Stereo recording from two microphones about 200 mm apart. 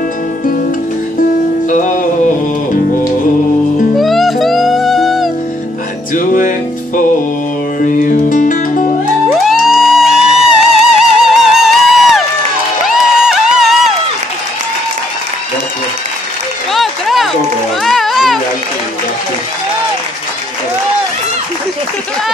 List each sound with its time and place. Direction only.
1.7 s music: 40° left (ahead or behind)
3.9 s music: centre (ahead or behind)
6.1 s music: 40° left (ahead or behind)
7.8 s music: 40° left (ahead or behind)
9.4 s music: centre (ahead or behind)
16.7 s a sound: centre (ahead or behind)
17.8 s music: centre (ahead or behind)